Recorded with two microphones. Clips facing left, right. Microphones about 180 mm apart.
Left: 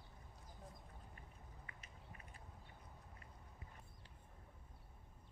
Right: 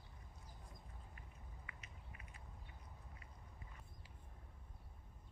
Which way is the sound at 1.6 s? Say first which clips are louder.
Even; 40° left (ahead or behind).